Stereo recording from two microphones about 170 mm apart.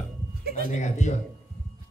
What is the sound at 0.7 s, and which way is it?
Speech, 45° left (ahead or behind).